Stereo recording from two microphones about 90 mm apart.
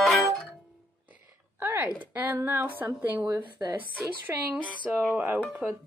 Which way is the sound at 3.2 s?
15° right (ahead or behind).